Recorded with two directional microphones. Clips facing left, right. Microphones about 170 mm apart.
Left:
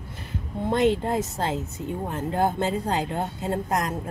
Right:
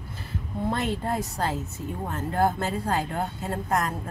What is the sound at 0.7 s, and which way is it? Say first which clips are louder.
Speech: left 6 dB; 20° left (ahead or behind).